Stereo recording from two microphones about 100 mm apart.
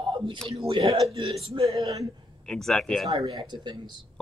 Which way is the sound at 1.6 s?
35° right (ahead or behind).